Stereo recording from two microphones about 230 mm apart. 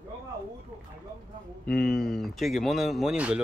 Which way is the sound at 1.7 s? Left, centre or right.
Centre.